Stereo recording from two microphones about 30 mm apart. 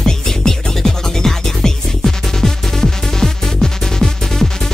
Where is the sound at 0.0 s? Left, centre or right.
Centre.